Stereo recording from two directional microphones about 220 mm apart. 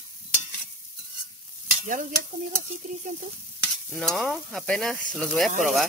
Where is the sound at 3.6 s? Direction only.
5° left (ahead or behind).